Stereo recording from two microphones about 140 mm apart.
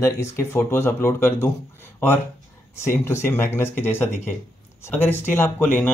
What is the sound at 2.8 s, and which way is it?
Speech, 20° left (ahead or behind).